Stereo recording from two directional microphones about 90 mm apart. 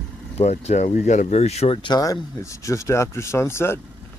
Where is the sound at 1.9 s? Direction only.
45° left (ahead or behind).